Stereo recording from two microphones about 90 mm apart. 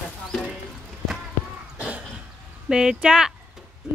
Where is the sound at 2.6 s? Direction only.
10° right (ahead or behind).